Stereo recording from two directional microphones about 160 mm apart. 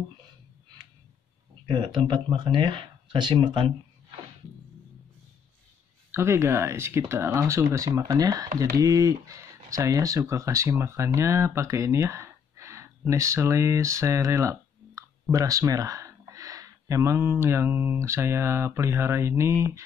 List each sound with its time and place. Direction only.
1.7 s speech: 30° right (ahead or behind)
6.1 s speech: 15° right (ahead or behind)